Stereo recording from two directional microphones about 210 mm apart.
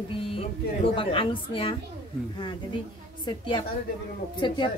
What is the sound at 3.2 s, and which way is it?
Speech, 25° left (ahead or behind).